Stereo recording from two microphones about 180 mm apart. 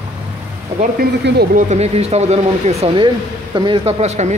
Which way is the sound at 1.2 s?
60° right (ahead or behind).